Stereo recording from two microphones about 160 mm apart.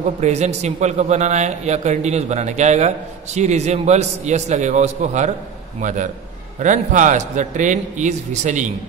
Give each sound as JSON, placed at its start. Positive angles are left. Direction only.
{"t": 0.2, "sound": "a man's voice", "side_deg": -45}